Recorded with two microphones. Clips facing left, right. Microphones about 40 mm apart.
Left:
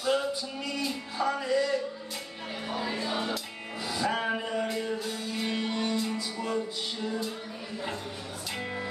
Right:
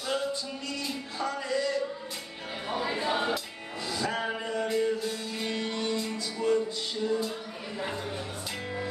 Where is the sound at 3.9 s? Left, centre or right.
Centre.